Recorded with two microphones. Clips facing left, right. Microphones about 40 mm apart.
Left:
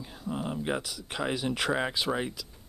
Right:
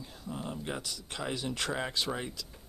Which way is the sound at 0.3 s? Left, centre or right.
Left.